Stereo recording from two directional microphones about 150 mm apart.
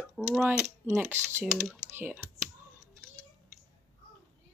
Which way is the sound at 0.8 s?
15° right (ahead or behind).